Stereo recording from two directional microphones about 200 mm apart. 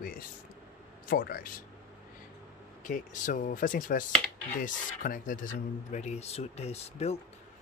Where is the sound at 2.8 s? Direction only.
40° left (ahead or behind).